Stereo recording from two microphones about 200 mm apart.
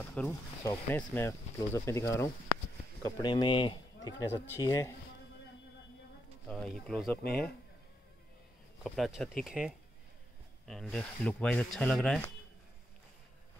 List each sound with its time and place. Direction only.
0.0 s snake: 5° left (ahead or behind)
0.7 s a man's voice: 10° left (ahead or behind)
6.4 s speech: 5° left (ahead or behind)
8.8 s speech: centre (ahead or behind)